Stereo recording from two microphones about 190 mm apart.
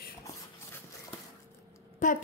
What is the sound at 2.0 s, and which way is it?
Speech, 40° left (ahead or behind).